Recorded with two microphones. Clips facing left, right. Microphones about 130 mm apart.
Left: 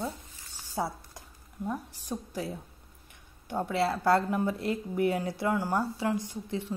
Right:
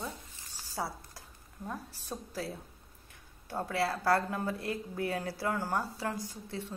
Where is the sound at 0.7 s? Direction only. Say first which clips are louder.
Left 5 dB; 25° left (ahead or behind).